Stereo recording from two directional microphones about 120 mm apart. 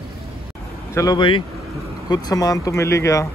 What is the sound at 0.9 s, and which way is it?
Speech, 30° left (ahead or behind).